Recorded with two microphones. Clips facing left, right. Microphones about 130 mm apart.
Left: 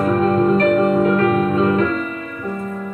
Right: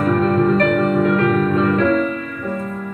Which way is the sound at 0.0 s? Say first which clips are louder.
Even; 35° left (ahead or behind).